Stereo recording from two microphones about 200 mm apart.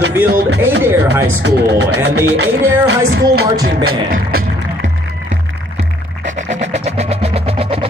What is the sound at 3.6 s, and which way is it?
Music, 50° right (ahead or behind).